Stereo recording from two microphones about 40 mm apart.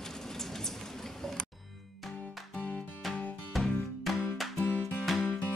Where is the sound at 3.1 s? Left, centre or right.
Centre.